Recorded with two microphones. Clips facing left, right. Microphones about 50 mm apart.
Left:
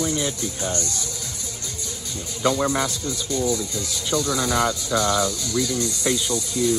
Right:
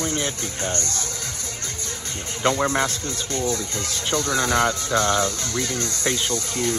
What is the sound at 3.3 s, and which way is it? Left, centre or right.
Speech, right.